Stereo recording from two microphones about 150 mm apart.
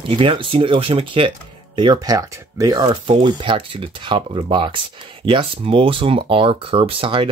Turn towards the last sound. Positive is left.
turn(degrees=-35)  # may be behind; listen again after turning